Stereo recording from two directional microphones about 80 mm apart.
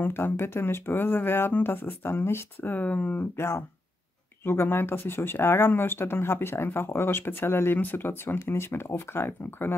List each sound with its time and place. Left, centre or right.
0.0 s speech: left